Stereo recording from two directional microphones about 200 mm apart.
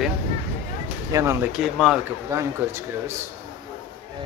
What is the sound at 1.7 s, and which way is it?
Speech, centre (ahead or behind).